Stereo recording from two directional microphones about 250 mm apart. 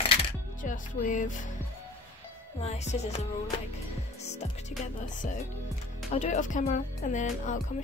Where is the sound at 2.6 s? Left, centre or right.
Left.